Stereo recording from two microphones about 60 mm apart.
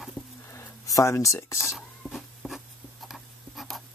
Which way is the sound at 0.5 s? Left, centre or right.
Left.